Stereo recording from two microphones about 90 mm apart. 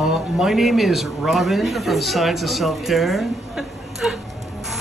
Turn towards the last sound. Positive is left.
turn(degrees=0)  # may be behind; listen again after turning